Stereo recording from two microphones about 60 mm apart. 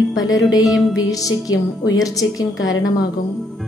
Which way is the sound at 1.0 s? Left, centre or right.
Left.